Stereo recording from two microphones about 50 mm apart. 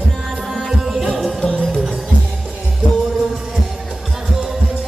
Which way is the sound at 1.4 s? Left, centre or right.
Centre.